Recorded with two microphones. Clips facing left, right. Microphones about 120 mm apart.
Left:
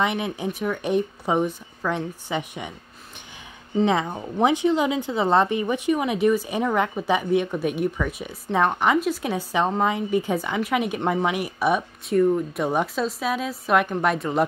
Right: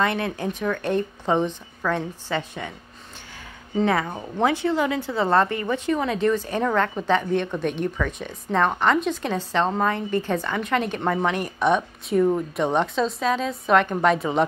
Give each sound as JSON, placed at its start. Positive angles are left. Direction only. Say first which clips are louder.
{"t": 0.0, "sound": "speech", "louder": "right 1 dB", "side_deg": 15}
{"t": 3.8, "sound": "a woman's voice", "louder": "left 1 dB", "side_deg": 20}